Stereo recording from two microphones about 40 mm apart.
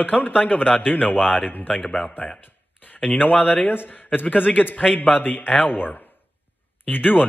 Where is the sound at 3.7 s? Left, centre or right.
Left.